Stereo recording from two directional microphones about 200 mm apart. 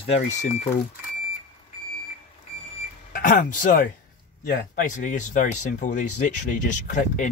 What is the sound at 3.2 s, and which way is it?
Speech, 40° left (ahead or behind).